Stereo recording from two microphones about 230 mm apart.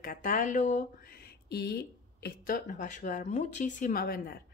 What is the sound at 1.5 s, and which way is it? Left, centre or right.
A woman's voice, left.